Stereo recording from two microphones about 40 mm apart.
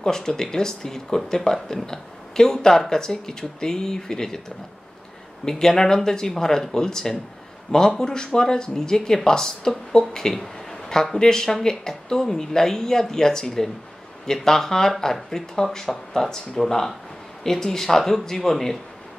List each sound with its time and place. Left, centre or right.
0.0 s speech: centre
5.4 s speech: centre